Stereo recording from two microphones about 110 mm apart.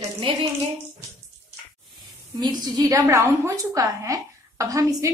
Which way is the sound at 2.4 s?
40° right (ahead or behind).